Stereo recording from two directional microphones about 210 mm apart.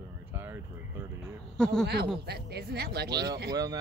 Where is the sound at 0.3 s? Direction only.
10° right (ahead or behind).